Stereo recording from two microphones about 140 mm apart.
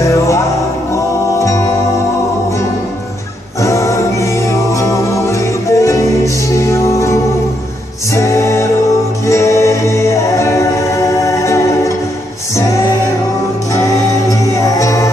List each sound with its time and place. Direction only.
0.0 s music: 20° left (ahead or behind)
1.4 s music: 20° left (ahead or behind)
3.6 s music: 20° left (ahead or behind)
14.6 s music: 25° left (ahead or behind)